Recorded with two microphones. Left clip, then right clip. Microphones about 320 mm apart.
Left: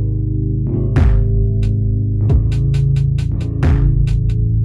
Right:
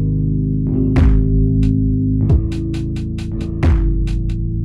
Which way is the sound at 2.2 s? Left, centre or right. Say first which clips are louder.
Right 2 dB; centre.